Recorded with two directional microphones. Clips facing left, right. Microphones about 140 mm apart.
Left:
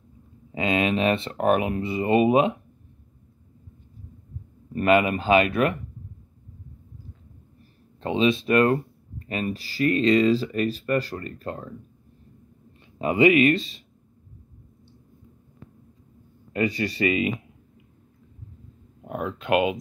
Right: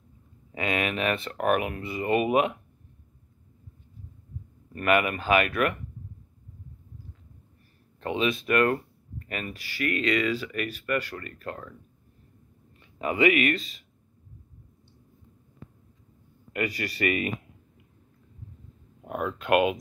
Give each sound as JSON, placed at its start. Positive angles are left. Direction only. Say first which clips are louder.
{"t": 0.5, "sound": "speech", "louder": "left 5 dB", "side_deg": 25}
{"t": 4.7, "sound": "speech", "louder": "left 4 dB", "side_deg": 25}
{"t": 8.0, "sound": "speech", "louder": "left 5 dB", "side_deg": 25}
{"t": 13.0, "sound": "speech", "louder": "left 5 dB", "side_deg": 30}
{"t": 16.5, "sound": "speech", "louder": "left 5 dB", "side_deg": 30}
{"t": 19.0, "sound": "speech", "louder": "even", "side_deg": 25}